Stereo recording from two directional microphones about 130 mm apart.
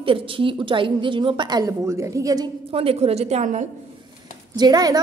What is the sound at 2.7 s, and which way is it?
Speech, 50° right (ahead or behind).